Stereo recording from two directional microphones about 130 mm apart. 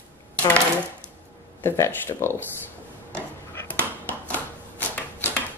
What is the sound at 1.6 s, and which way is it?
Speech, 20° left (ahead or behind).